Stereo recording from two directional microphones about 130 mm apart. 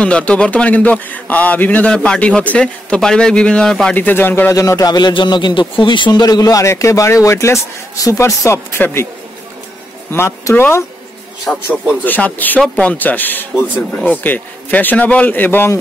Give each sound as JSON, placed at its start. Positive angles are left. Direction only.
{"t": 0.0, "sound": "a man's voice", "side_deg": 10}
{"t": 10.1, "sound": "speech", "side_deg": 20}
{"t": 11.5, "sound": "a man's voice", "side_deg": 5}